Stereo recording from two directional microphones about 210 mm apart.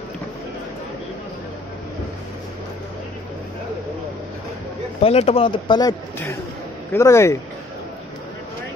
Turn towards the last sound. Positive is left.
turn(degrees=15)  # may be behind; listen again after turning